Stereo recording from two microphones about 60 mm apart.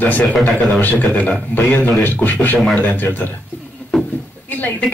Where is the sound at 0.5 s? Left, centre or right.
Centre.